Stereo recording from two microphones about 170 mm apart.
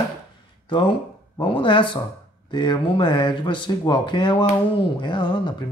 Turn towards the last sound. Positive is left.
turn(degrees=25)  # may be behind; listen again after turning